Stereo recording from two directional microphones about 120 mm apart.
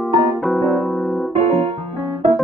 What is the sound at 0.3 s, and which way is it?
Keyboard, centre (ahead or behind).